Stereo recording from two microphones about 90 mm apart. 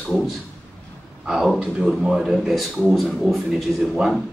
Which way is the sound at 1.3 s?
5° right (ahead or behind).